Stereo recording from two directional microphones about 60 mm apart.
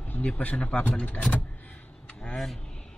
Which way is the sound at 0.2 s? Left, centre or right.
Left.